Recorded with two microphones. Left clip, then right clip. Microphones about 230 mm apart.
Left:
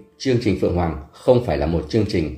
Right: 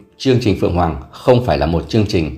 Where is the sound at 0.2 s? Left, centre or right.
Centre.